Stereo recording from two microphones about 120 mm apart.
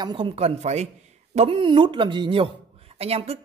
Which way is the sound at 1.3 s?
50° right (ahead or behind).